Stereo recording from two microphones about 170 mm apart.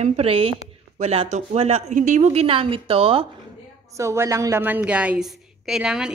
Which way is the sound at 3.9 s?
15° right (ahead or behind).